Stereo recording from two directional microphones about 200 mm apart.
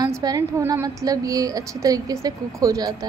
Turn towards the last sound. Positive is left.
turn(degrees=-20)  # may be behind; listen again after turning